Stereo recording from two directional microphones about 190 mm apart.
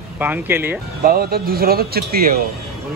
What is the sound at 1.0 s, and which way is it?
Speech, 55° right (ahead or behind).